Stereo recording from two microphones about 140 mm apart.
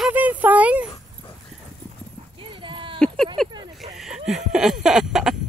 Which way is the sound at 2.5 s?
35° right (ahead or behind).